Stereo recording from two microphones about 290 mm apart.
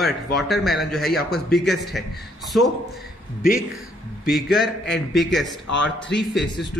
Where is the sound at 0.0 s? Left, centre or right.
Centre.